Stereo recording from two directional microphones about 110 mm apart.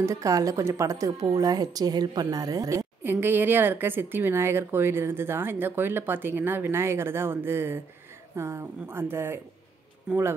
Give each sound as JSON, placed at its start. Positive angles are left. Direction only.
{"t": 0.0, "sound": "speech", "side_deg": -30}
{"t": 3.0, "sound": "speech", "side_deg": -20}